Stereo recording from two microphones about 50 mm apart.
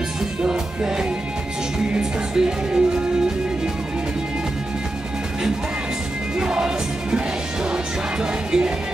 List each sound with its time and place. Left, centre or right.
0.4 s music: centre
6.3 s music: centre